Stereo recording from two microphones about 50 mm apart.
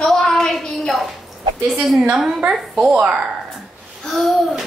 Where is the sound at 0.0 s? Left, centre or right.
Centre.